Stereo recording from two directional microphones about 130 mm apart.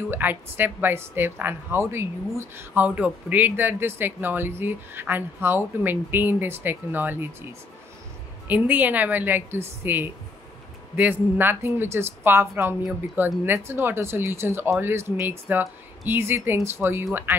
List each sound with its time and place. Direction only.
0.1 s speech: 15° right (ahead or behind)
8.5 s speech: 15° right (ahead or behind)